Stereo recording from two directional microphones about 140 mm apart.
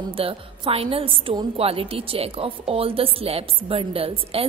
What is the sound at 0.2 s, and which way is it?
A woman's voice, 40° right (ahead or behind).